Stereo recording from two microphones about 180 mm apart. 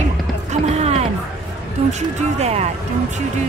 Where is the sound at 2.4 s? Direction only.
35° right (ahead or behind).